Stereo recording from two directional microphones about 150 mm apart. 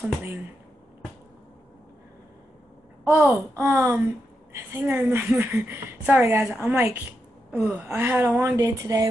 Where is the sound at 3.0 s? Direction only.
15° right (ahead or behind).